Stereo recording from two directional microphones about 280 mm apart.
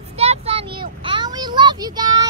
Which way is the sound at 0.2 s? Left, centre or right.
Right.